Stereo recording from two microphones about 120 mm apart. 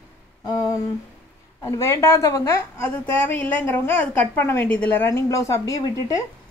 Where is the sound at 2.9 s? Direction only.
10° left (ahead or behind); by 6.2 s 30° left (ahead or behind).